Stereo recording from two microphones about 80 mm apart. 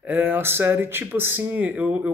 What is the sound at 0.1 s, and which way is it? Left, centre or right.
Speech, right.